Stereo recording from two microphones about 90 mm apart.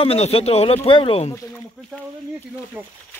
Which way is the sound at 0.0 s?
90° left.